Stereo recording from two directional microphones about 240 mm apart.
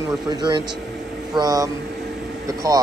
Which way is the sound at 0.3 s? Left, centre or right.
Centre.